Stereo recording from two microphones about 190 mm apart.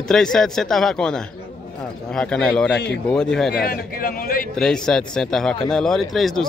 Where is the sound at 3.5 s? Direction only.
55° left (ahead or behind).